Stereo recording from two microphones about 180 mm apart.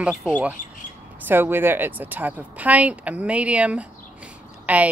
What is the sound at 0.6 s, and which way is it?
Speech, 50° left (ahead or behind).